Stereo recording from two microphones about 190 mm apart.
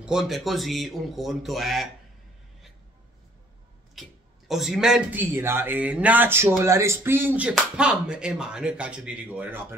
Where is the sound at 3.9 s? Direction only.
Centre (ahead or behind).